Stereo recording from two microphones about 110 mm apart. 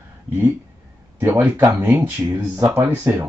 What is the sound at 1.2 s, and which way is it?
Speech, 15° right (ahead or behind).